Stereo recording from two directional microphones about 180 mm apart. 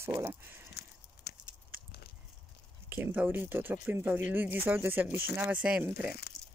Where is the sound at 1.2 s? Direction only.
70° left (ahead or behind).